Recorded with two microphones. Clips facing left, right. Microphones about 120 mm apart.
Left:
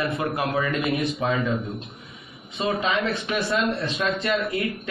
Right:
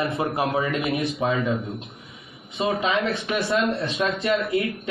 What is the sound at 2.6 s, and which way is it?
Speech, 25° right (ahead or behind).